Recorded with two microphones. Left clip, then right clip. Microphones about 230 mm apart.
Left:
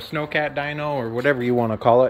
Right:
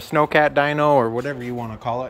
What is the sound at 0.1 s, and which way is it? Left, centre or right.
Speech, right.